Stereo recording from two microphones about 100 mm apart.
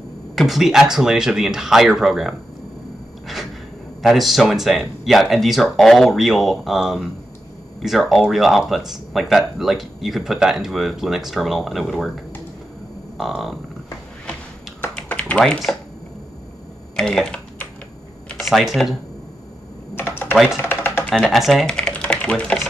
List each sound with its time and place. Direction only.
0.4 s speech: centre (ahead or behind)
4.0 s speech: centre (ahead or behind)
13.2 s speech: centre (ahead or behind)
15.0 s typing: 15° left (ahead or behind)
16.9 s speech: 5° left (ahead or behind)
18.4 s speech: centre (ahead or behind)
20.0 s typing: 20° left (ahead or behind)
20.6 s chopping: 25° left (ahead or behind)
21.2 s speech: centre (ahead or behind)